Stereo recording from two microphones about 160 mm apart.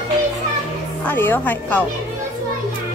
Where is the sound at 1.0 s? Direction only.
15° left (ahead or behind).